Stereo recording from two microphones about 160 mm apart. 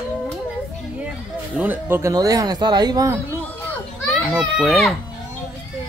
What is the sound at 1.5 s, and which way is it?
Speech, 10° right (ahead or behind).